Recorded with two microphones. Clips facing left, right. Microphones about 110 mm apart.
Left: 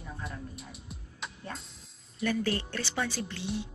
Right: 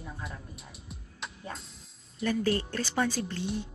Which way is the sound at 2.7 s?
40° right (ahead or behind).